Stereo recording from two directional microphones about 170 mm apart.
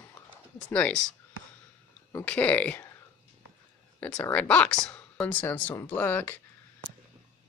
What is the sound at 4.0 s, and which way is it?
Speech, 5° left (ahead or behind).